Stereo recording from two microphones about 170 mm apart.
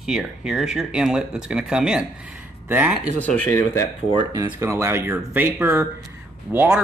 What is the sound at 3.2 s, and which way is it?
Speech, 10° left (ahead or behind).